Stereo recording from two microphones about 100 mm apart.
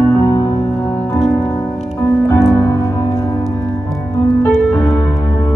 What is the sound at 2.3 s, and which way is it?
Music, 35° left (ahead or behind).